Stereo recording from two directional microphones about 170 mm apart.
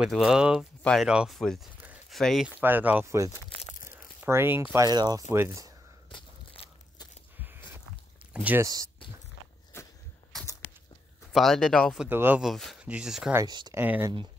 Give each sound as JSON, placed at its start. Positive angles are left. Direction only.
{"t": 0.0, "sound": "speech", "side_deg": -5}
{"t": 1.9, "sound": "a sound", "side_deg": 0}
{"t": 2.6, "sound": "speech", "side_deg": -10}
{"t": 6.0, "sound": "biting", "side_deg": 30}
{"t": 7.4, "sound": "a sound", "side_deg": -10}
{"t": 8.3, "sound": "speech", "side_deg": -10}
{"t": 11.3, "sound": "speech", "side_deg": 0}
{"t": 12.1, "sound": "speech", "side_deg": -10}
{"t": 13.3, "sound": "speech", "side_deg": -20}
{"t": 13.7, "sound": "speech", "side_deg": -10}